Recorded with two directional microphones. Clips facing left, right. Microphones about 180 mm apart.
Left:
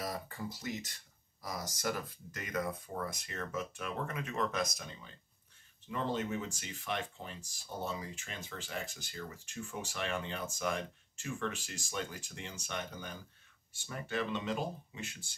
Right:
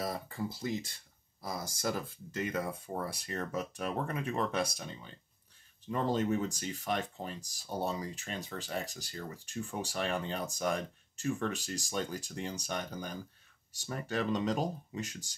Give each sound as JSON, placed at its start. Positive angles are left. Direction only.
{"t": 0.0, "sound": "speech", "side_deg": -25}